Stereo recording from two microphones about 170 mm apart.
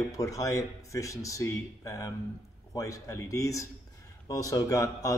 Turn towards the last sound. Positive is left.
turn(degrees=20)  # may be behind; listen again after turning